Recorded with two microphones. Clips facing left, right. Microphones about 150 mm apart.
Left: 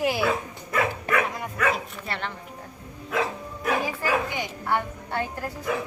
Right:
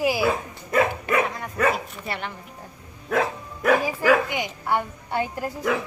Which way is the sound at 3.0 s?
50° right (ahead or behind).